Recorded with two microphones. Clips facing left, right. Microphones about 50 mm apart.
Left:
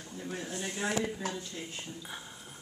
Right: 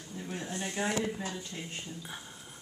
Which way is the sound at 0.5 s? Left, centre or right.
Right.